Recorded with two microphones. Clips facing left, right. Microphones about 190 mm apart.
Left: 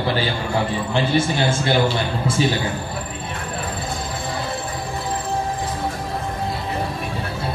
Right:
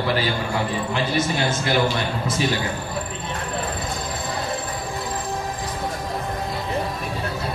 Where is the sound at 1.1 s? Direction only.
30° left (ahead or behind).